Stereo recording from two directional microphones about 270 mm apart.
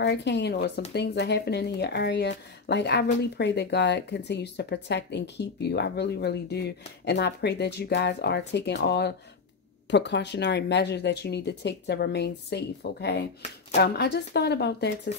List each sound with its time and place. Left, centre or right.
0.0 s speech: left